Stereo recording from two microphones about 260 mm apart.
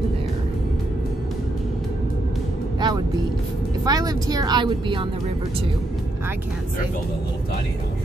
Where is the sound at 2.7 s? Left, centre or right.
Centre.